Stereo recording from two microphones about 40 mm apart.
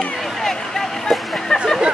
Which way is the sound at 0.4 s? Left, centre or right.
Centre.